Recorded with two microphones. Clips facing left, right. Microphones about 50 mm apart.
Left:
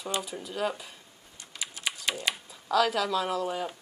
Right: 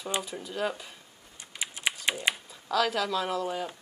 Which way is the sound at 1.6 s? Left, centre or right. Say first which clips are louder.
Right 3 dB; right.